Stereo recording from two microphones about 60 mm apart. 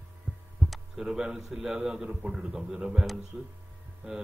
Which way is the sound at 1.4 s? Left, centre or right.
Centre.